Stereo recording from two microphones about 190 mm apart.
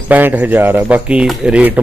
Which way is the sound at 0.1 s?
10° right (ahead or behind).